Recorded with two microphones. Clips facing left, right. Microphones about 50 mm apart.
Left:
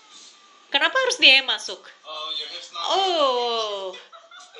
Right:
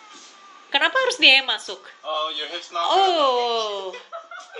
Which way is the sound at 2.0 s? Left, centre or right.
Right.